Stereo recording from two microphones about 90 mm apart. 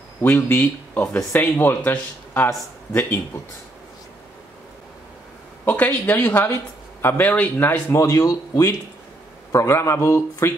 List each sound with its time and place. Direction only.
0.2 s speech: 25° left (ahead or behind)
1.9 s speech: 25° left (ahead or behind)
5.7 s speech: 20° left (ahead or behind)
8.0 s a man's voice: 35° left (ahead or behind)